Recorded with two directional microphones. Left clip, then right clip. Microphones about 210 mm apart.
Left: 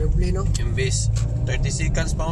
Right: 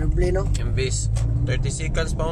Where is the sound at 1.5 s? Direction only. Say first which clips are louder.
Left 1 dB; centre (ahead or behind).